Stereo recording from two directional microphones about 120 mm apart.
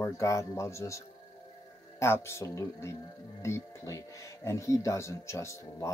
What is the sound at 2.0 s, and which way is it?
Speech, 20° left (ahead or behind).